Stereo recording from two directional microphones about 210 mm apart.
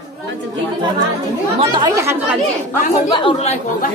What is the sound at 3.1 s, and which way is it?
Speech, 25° left (ahead or behind).